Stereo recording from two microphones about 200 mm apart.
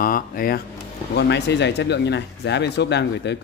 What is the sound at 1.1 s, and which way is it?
Speech, 60° left (ahead or behind).